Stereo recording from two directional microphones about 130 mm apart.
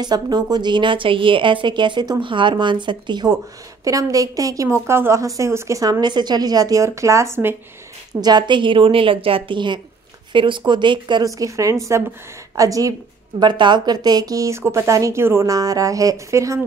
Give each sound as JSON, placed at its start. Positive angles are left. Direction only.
{"t": 0.0, "sound": "a woman's voice", "side_deg": -30}
{"t": 8.1, "sound": "a woman's voice", "side_deg": -30}